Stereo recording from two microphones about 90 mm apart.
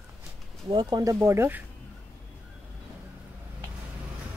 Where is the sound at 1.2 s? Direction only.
25° right (ahead or behind).